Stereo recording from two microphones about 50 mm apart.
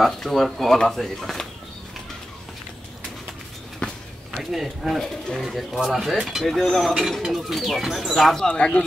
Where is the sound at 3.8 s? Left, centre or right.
Left.